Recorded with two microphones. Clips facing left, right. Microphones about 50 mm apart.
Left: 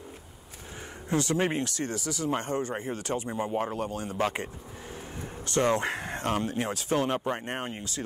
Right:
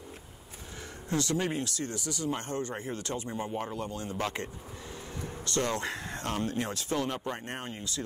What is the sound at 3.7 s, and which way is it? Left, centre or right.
Speech, left.